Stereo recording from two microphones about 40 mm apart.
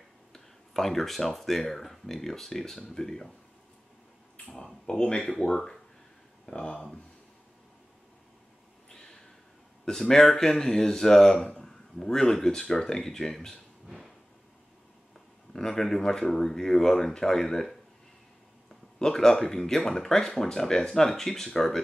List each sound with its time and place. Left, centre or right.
0.3 s speech: centre
4.8 s speech: left
5.4 s speech: centre
6.5 s speech: left
8.9 s a sound: centre
9.8 s speech: centre
15.5 s speech: centre
18.7 s speech: centre